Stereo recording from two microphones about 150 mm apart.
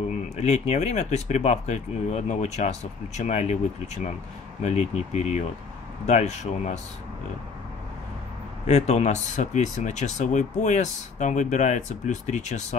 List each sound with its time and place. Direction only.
0.1 s speech: 50° left (ahead or behind)
8.6 s speech: 45° left (ahead or behind)